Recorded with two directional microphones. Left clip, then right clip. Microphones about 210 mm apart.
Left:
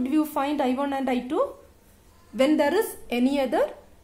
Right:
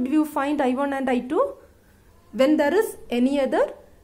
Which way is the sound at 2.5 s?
15° left (ahead or behind).